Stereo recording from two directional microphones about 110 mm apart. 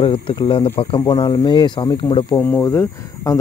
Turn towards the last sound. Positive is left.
turn(degrees=30)  # may be behind; listen again after turning